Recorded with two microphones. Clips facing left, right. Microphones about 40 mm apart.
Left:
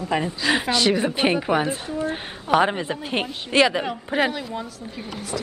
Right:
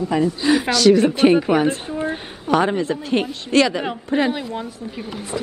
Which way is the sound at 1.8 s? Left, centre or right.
Right.